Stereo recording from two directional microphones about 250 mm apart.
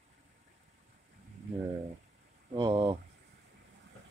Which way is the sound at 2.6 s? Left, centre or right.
Centre.